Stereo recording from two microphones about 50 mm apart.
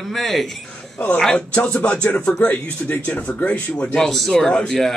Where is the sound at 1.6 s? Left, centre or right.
Left.